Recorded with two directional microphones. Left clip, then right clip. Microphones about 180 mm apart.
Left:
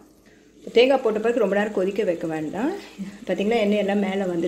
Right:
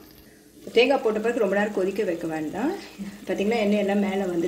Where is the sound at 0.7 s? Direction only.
35° left (ahead or behind).